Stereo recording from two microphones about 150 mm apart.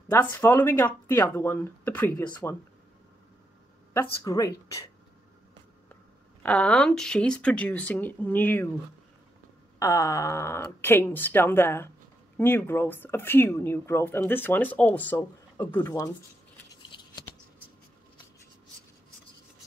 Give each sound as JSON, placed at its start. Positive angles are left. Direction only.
{"t": 0.1, "sound": "speech", "side_deg": 15}
{"t": 3.9, "sound": "speech", "side_deg": 20}
{"t": 6.4, "sound": "speech", "side_deg": 10}
{"t": 9.8, "sound": "speech", "side_deg": 20}
{"t": 16.9, "sound": "scissors", "side_deg": 35}